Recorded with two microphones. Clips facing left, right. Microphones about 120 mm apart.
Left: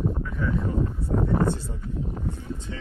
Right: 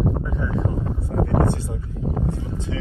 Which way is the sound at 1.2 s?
60° right (ahead or behind).